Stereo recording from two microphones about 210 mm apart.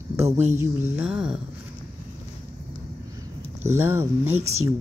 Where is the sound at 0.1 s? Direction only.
10° right (ahead or behind).